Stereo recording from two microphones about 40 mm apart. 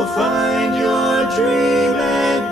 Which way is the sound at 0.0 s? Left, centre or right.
Centre.